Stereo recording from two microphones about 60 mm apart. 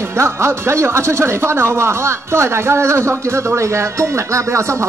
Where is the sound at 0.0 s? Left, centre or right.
Right.